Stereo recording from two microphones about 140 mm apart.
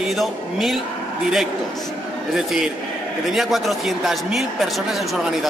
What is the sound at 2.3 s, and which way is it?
A man's voice, 5° right (ahead or behind).